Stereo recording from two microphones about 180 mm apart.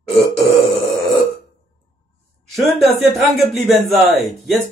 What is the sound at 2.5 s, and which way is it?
A man's voice, centre (ahead or behind).